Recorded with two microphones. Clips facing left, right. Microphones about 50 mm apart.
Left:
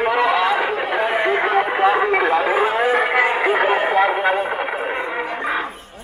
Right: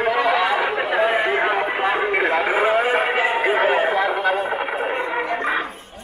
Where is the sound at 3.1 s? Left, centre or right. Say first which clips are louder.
Left 2 dB; left.